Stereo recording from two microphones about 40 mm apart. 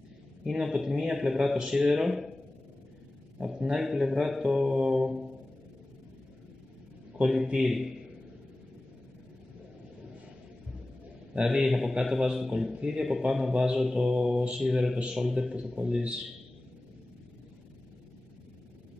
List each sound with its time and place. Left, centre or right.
0.4 s a man's voice: centre
3.4 s a man's voice: centre
3.8 s a man's voice: centre
7.2 s a man's voice: centre
11.4 s a man's voice: centre
11.9 s a man's voice: right
15.2 s a man's voice: right